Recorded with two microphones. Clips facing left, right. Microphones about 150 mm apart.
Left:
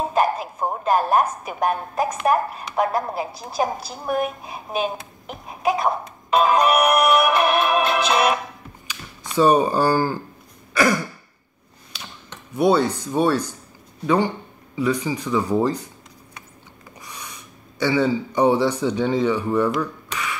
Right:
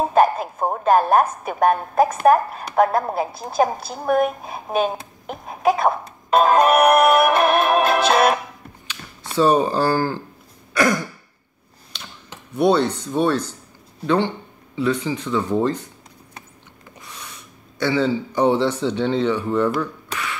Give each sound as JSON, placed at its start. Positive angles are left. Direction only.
{"t": 0.1, "sound": "a woman's voice", "side_deg": -50}
{"t": 9.4, "sound": "speech", "side_deg": 10}
{"t": 10.7, "sound": "throat clearing", "side_deg": 5}
{"t": 11.9, "sound": "a sound", "side_deg": 5}
{"t": 12.5, "sound": "speech", "side_deg": 10}
{"t": 17.0, "sound": "speech", "side_deg": 10}